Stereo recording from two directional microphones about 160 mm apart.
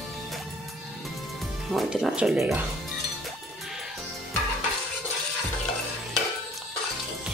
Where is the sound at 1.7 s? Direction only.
5° right (ahead or behind).